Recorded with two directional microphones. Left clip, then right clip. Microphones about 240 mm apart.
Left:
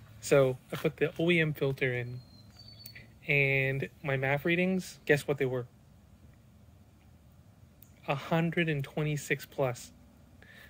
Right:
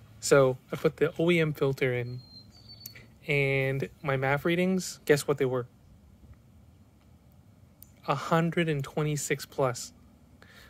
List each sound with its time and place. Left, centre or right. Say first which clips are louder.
0.3 s speech: right 3 dB; right
8.0 s speech: right 4 dB; right